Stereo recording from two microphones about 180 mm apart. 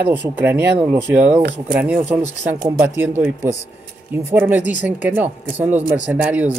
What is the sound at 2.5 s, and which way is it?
Speech, 50° right (ahead or behind).